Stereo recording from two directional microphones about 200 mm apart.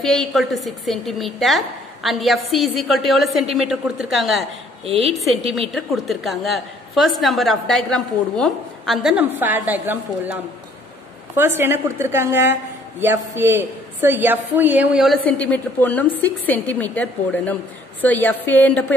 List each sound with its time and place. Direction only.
0.0 s a woman's voice: centre (ahead or behind)
4.8 s a woman's voice: 30° right (ahead or behind)
5.1 s a woman's voice: centre (ahead or behind)